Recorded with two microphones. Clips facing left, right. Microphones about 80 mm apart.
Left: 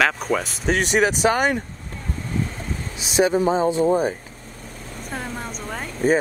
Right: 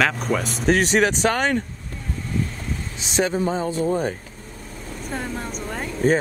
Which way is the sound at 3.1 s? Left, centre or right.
Centre.